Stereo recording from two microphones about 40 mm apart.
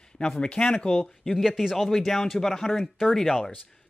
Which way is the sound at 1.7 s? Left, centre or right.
Centre.